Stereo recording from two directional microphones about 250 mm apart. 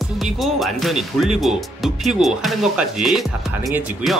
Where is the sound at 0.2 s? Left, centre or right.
Centre.